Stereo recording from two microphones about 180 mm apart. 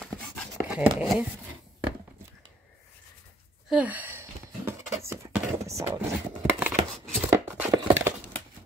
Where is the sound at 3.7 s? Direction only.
10° right (ahead or behind).